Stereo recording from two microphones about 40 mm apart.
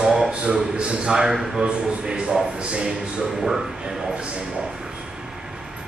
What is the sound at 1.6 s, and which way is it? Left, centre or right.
A man's voice, right.